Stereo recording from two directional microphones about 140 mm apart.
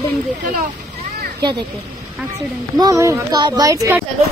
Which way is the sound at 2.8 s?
25° right (ahead or behind).